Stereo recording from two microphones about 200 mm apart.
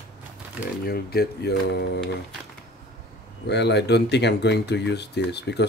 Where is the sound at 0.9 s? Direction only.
50° left (ahead or behind).